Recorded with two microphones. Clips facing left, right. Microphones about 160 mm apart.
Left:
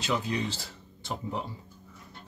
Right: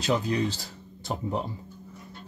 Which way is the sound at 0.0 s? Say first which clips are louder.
Right 4 dB; 40° right (ahead or behind).